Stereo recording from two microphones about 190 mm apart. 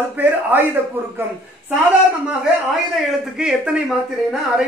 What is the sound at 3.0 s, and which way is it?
Speech, 5° right (ahead or behind).